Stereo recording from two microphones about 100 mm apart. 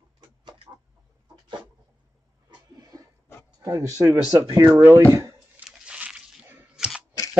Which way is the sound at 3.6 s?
30° right (ahead or behind).